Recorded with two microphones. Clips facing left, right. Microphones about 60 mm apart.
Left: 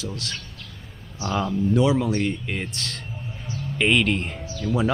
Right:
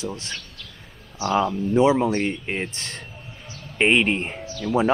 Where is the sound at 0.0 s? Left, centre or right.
Right.